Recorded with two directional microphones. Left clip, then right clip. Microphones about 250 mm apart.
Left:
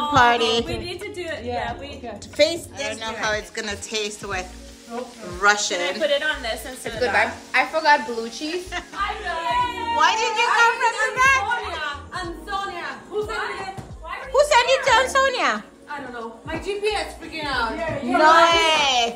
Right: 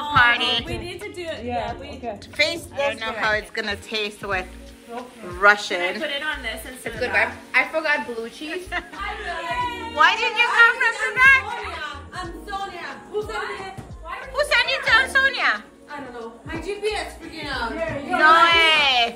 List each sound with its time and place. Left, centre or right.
0.1 s female singing: centre
0.7 s singing: centre
2.3 s a woman's voice: centre
5.9 s a woman's voice: left
8.5 s a woman's voice: centre
12.1 s music: centre
14.3 s a woman's voice: left
16.5 s a woman's voice: centre
18.4 s a woman's voice: centre